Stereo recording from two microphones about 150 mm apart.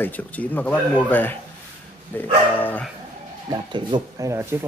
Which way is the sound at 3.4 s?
30° right (ahead or behind).